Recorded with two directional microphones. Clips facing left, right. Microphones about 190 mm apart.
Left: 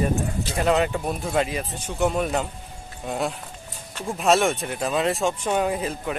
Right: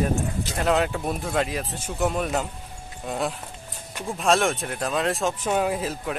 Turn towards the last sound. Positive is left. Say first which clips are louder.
# left 1 dB
turn(degrees=0)  # may be behind; listen again after turning